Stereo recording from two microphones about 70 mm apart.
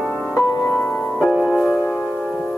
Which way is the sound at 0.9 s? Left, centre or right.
Centre.